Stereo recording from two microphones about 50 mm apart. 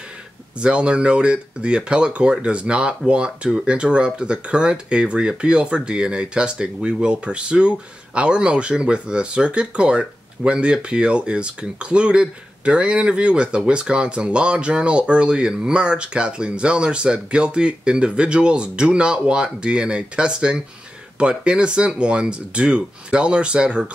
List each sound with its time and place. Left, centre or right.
0.6 s speech: right